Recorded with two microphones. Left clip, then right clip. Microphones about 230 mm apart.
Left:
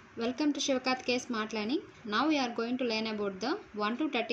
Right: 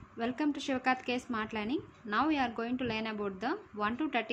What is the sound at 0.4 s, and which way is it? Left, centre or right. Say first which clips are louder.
Speech: left 3 dB; centre.